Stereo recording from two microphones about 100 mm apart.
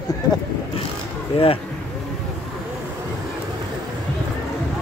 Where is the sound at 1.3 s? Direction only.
80° left.